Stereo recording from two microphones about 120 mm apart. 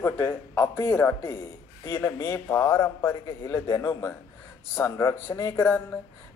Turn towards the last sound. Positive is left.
turn(degrees=15)  # may be behind; listen again after turning